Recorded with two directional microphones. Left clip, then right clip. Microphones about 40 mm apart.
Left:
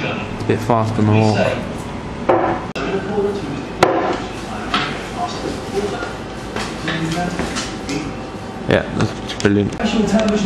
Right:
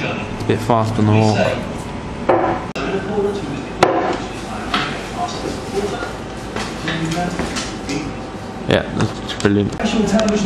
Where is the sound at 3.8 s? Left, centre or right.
Centre.